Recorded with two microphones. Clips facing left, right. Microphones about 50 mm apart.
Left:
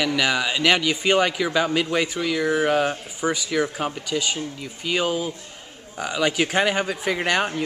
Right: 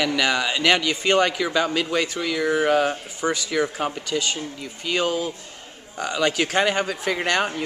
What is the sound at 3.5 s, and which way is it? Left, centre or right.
Speech, centre.